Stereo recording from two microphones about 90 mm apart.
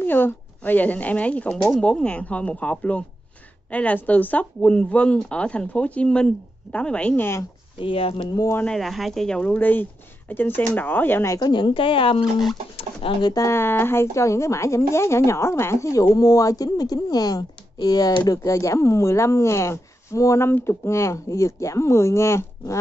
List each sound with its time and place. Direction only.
0.0 s speech: 25° left (ahead or behind)
7.8 s speech: 90° left
8.6 s speech: centre (ahead or behind); by 11.3 s 25° left (ahead or behind)
11.3 s a woman's voice: 55° left (ahead or behind); by 13.3 s 90° left
13.3 s a woman's voice: 35° left (ahead or behind); by 18.4 s 50° left (ahead or behind)
18.4 s a woman's voice: 35° left (ahead or behind)